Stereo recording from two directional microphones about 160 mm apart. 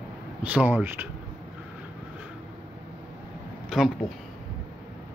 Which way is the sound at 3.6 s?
Centre (ahead or behind).